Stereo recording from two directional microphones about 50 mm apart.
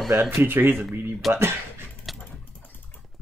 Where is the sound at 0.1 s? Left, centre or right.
Right.